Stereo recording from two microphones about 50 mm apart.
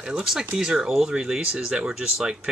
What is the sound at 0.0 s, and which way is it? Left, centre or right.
Speech, centre.